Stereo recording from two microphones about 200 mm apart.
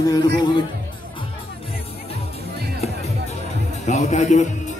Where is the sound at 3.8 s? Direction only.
35° left (ahead or behind).